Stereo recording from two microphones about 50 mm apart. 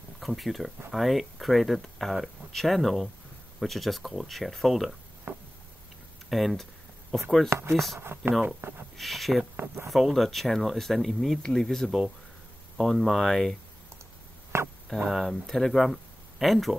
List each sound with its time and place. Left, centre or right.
0.2 s speech: centre
5.3 s a sound: right
6.3 s speech: centre
7.4 s speech: right
7.7 s speech: centre
8.5 s speech: right
8.9 s speech: centre
14.5 s a sound: right
15.0 s speech: centre